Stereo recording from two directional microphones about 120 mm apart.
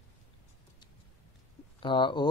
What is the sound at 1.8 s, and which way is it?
Speech, 40° left (ahead or behind).